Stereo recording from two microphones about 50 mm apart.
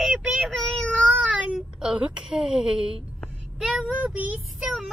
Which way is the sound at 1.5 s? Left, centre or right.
Right.